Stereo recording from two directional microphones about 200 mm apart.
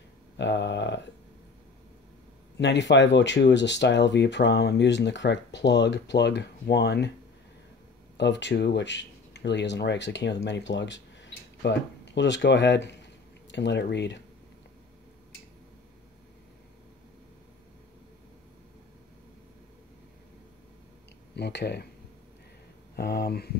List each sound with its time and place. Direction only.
0.4 s speech: 60° left (ahead or behind)
2.6 s speech: 60° left (ahead or behind)
8.2 s speech: 60° left (ahead or behind)
21.4 s speech: 55° left (ahead or behind)
22.9 s speech: 50° left (ahead or behind)